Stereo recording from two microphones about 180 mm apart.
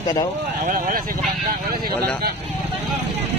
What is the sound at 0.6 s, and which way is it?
Speech, 45° right (ahead or behind).